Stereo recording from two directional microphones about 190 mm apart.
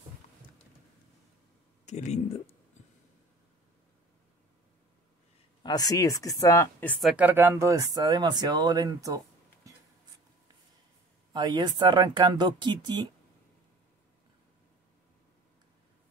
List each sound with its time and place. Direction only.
1.9 s speech: 40° left (ahead or behind)
5.6 s speech: 20° left (ahead or behind); by 9.2 s 20° right (ahead or behind)
11.3 s speech: 25° right (ahead or behind)